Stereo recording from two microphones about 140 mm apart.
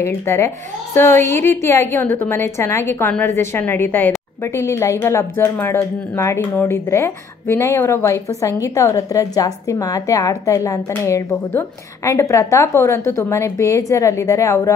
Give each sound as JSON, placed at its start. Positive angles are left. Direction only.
{"t": 0.0, "sound": "a woman's voice", "side_deg": 20}